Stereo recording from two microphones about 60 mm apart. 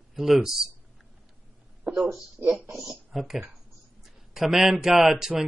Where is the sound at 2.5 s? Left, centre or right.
Right.